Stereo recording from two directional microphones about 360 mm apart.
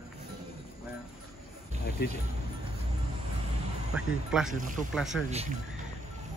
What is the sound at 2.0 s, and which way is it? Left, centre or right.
Speech, left.